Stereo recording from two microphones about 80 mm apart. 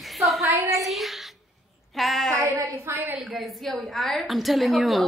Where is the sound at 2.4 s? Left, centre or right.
Right.